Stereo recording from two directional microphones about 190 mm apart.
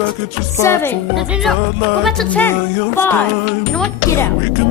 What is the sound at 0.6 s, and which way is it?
Speech, 15° left (ahead or behind).